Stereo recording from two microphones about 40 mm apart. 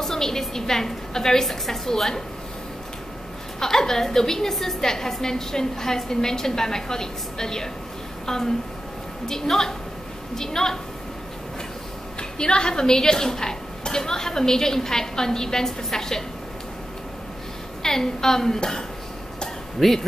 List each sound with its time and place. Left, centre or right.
0.0 s a woman's voice: centre
3.5 s a woman's voice: centre
12.2 s a woman's voice: left
17.8 s a woman's voice: centre